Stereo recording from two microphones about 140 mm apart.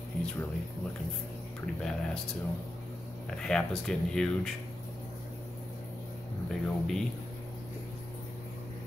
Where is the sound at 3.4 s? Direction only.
5° left (ahead or behind).